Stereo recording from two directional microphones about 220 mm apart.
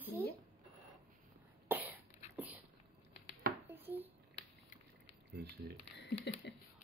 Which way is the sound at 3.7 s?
10° right (ahead or behind).